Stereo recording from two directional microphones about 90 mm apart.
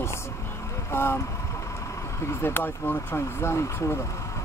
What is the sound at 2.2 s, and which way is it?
Speech, 30° left (ahead or behind).